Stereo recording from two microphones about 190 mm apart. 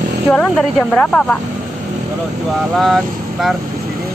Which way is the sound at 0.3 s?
5° left (ahead or behind).